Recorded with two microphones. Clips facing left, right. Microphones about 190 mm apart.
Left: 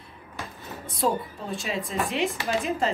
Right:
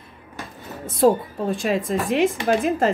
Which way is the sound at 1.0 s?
45° right (ahead or behind).